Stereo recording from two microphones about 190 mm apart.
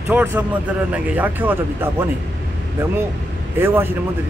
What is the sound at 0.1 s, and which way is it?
A man's voice, 10° right (ahead or behind).